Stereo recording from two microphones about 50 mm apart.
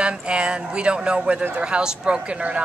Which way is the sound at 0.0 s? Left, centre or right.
Right.